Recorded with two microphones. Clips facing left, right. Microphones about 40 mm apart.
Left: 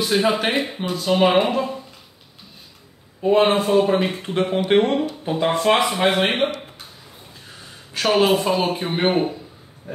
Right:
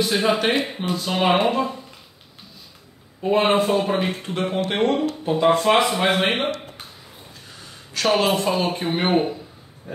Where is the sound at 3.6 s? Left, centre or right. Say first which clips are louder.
Left 3 dB; centre.